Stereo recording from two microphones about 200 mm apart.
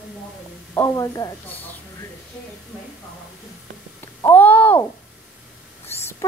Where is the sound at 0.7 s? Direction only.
15° left (ahead or behind).